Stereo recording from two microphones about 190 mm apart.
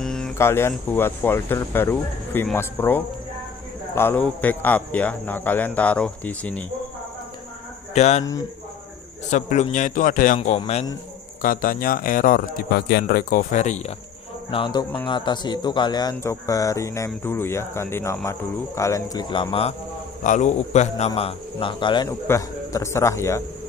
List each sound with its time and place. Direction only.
0.0 s a sound: 5° left (ahead or behind)
0.4 s speech: 15° left (ahead or behind)
7.9 s speech: 35° left (ahead or behind)
9.3 s a man's voice: 40° left (ahead or behind)
14.5 s speech: 25° left (ahead or behind)
20.2 s speech: 40° left (ahead or behind); by 23.4 s 15° left (ahead or behind)